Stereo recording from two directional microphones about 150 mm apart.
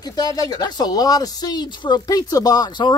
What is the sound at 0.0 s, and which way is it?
Speech, 25° left (ahead or behind).